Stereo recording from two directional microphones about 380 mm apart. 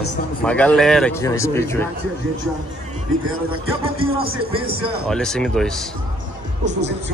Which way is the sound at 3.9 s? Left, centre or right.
Centre.